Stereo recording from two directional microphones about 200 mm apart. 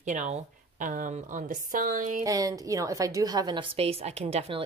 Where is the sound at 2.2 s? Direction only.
15° right (ahead or behind).